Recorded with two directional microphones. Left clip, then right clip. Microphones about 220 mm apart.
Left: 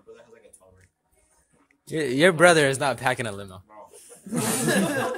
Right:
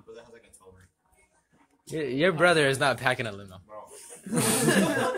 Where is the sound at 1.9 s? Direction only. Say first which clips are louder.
Left 5 dB; 25° left (ahead or behind).